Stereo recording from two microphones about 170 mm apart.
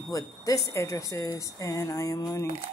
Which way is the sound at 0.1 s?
20° left (ahead or behind).